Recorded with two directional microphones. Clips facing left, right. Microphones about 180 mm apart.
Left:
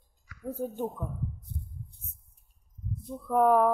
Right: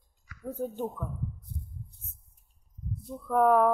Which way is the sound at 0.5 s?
10° left (ahead or behind).